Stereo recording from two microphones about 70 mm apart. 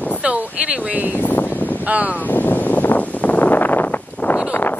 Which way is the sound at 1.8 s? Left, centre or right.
Right.